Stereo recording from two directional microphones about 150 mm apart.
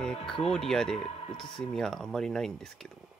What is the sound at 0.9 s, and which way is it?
Speech, 40° left (ahead or behind).